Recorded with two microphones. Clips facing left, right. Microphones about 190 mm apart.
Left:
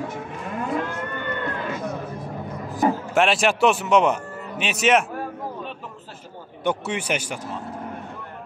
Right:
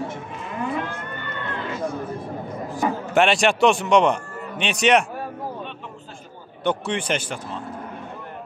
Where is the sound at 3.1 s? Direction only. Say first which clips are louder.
Right 6 dB; centre (ahead or behind).